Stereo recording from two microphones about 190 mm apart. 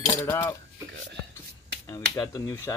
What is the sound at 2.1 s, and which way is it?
Speech, 20° left (ahead or behind).